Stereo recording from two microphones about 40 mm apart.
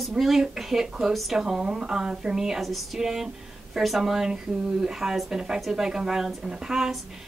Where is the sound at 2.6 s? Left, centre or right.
Centre.